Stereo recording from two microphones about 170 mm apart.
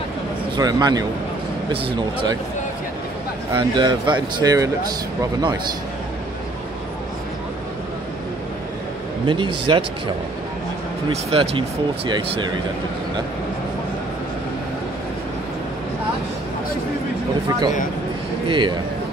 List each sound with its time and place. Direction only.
0.6 s speech: 25° right (ahead or behind)
3.5 s speech: 25° right (ahead or behind)
9.2 s speech: 30° right (ahead or behind)
11.2 s speech: 35° right (ahead or behind)
17.5 s speech: 25° right (ahead or behind)